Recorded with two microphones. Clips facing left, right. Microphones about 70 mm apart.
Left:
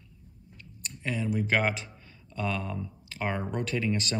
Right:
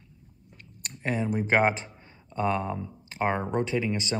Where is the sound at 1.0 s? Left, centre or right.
Right.